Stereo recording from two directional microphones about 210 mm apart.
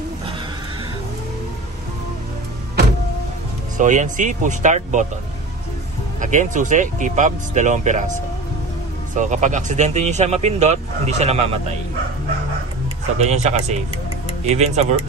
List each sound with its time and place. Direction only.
3.7 s speech: 35° right (ahead or behind)
6.2 s speech: 35° right (ahead or behind)
9.1 s speech: 35° right (ahead or behind)
13.2 s speech: 30° right (ahead or behind)